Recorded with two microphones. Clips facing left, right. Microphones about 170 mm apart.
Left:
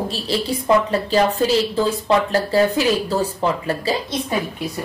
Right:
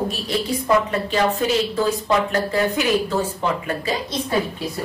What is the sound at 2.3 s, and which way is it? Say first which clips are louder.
A woman's voice: left 3 dB; 35° left (ahead or behind).